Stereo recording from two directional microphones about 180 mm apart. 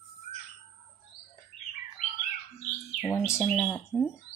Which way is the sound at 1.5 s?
Centre (ahead or behind).